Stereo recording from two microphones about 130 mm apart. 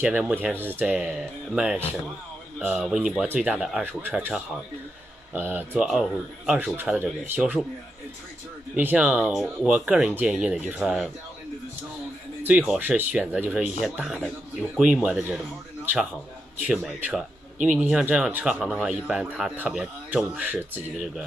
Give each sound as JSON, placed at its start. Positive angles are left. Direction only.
{"t": 0.0, "sound": "speech", "side_deg": -10}
{"t": 5.3, "sound": "speech", "side_deg": -10}
{"t": 8.7, "sound": "speech", "side_deg": -10}
{"t": 12.4, "sound": "speech", "side_deg": -10}